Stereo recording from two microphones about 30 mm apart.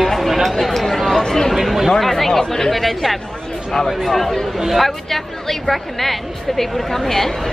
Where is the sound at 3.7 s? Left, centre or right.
Centre.